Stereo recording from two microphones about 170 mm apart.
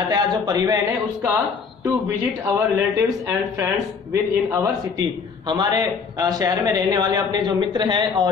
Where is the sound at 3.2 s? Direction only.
20° right (ahead or behind).